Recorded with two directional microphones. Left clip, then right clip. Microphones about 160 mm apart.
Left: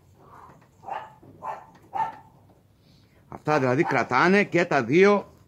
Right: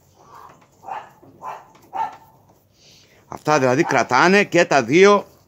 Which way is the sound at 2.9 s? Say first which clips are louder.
Right 8 dB; 50° right (ahead or behind).